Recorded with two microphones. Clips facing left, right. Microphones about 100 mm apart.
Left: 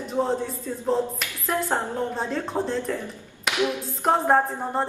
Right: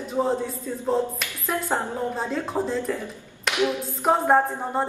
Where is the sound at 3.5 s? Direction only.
20° right (ahead or behind).